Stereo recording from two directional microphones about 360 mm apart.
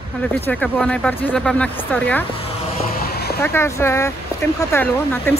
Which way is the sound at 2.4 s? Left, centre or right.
Left.